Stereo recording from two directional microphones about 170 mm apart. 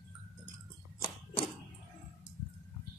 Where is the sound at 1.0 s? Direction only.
30° left (ahead or behind).